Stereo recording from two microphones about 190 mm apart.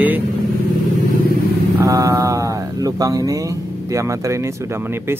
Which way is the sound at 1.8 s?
15° right (ahead or behind).